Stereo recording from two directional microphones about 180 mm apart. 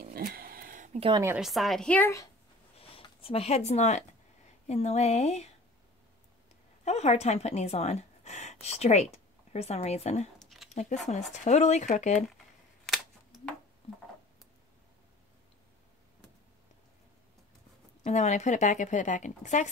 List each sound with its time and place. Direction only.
0.0 s a sound: 55° right (ahead or behind)
0.9 s a woman's voice: 30° right (ahead or behind)
1.4 s a woman's voice: centre (ahead or behind)
2.8 s speech: 30° left (ahead or behind)
6.8 s speech: 35° left (ahead or behind)
10.4 s a sound: centre (ahead or behind)
10.7 s speech: 40° left (ahead or behind)
12.8 s a sound: centre (ahead or behind)
18.0 s a woman's voice: 40° left (ahead or behind)